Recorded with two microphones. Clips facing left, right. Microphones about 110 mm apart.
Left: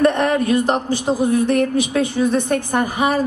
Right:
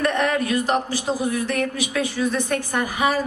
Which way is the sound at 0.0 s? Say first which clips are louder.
Left 5 dB; 25° left (ahead or behind).